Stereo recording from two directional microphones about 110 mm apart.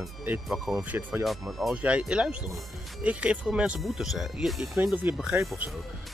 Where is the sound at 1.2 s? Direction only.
Centre (ahead or behind).